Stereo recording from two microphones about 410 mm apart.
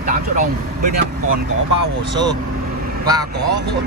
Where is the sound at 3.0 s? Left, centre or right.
Centre.